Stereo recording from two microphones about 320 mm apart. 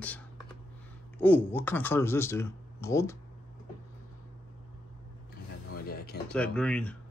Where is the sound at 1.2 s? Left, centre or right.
Centre.